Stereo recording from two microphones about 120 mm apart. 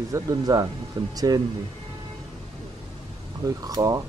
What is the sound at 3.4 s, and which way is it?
Speech, 30° right (ahead or behind).